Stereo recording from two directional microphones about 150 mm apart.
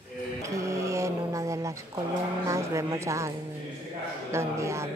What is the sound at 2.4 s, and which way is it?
Speech, 20° right (ahead or behind).